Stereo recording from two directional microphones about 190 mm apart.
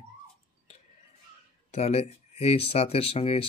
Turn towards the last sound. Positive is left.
turn(degrees=30)  # may be behind; listen again after turning